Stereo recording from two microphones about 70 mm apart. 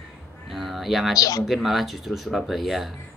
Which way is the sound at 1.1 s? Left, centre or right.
Left.